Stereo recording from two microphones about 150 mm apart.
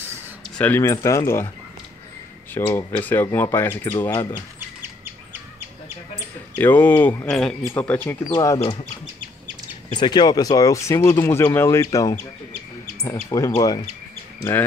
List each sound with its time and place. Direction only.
0.6 s speech: 15° left (ahead or behind)
2.5 s speech: 15° left (ahead or behind)
6.5 s speech: 10° left (ahead or behind)
9.9 s speech: 30° left (ahead or behind)